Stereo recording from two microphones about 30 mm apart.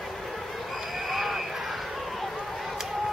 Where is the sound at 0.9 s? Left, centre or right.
Centre.